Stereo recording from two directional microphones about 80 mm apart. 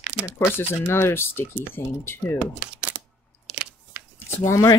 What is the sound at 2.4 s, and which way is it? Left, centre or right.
Speech, centre.